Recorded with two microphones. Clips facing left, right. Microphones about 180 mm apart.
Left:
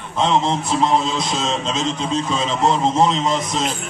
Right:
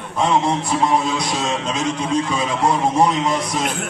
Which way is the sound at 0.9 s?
20° left (ahead or behind).